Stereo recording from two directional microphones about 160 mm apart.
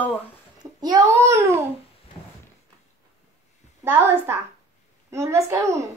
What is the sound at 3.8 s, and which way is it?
A child's voice, 15° right (ahead or behind).